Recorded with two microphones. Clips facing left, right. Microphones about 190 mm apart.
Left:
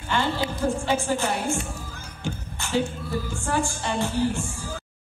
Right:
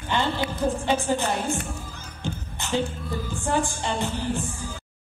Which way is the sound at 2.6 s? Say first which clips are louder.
Left 1 dB; 20° right (ahead or behind).